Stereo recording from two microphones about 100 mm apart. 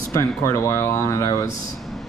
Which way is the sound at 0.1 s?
30° left (ahead or behind).